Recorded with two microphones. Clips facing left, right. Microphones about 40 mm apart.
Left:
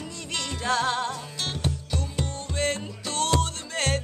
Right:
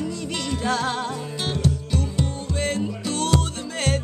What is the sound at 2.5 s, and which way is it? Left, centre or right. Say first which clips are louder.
Music: right 2 dB; centre.